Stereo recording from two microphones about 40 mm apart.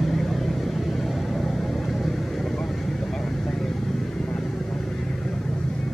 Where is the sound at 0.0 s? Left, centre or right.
Centre.